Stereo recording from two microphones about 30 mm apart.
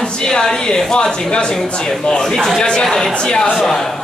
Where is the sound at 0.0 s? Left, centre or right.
Left.